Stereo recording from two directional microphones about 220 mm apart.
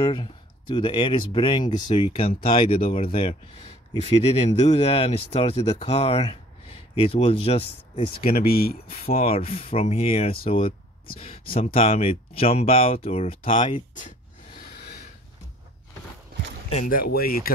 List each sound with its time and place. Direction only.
0.0 s speech: 20° left (ahead or behind)
8.3 s speech: 45° left (ahead or behind)
9.2 s speech: 25° left (ahead or behind)
13.6 s speech: 20° left (ahead or behind)
16.7 s speech: 40° left (ahead or behind)